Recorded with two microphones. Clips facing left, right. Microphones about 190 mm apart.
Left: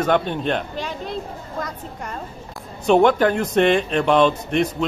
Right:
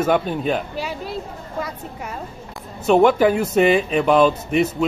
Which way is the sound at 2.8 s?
5° right (ahead or behind).